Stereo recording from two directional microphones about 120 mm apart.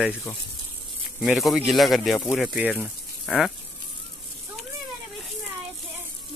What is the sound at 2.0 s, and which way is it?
Speech, 10° left (ahead or behind).